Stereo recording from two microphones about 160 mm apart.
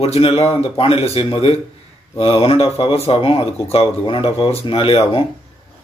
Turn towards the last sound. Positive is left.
turn(degrees=35)  # may be behind; listen again after turning